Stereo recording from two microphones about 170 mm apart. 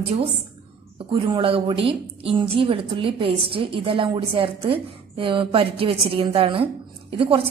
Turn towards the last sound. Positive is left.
turn(degrees=-35)  # may be behind; listen again after turning